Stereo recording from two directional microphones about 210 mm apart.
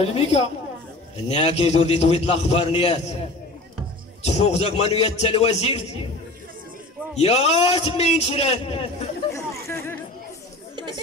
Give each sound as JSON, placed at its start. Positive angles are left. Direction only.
{"t": 0.0, "sound": "a man's voice", "side_deg": 30}
{"t": 4.2, "sound": "a man's voice", "side_deg": 30}
{"t": 7.2, "sound": "a man's voice", "side_deg": 30}
{"t": 9.3, "sound": "chatter", "side_deg": 15}